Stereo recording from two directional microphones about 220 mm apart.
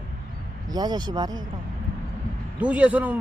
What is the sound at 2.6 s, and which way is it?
Speech, 5° right (ahead or behind).